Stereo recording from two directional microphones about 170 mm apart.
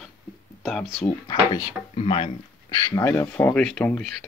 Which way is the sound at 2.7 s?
20° left (ahead or behind).